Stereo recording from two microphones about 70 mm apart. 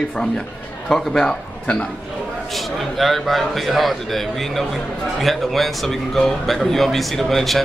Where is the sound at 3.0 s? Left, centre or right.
Centre.